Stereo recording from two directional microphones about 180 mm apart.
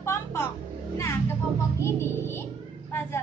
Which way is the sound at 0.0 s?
15° left (ahead or behind).